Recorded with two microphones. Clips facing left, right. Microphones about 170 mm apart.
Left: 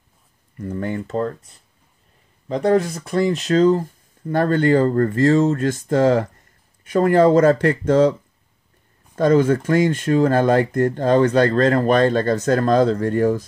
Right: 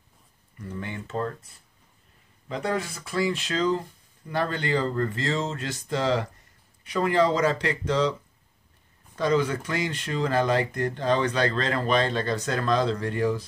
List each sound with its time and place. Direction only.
0.6 s speech: 45° left (ahead or behind)
2.4 s speech: 40° left (ahead or behind)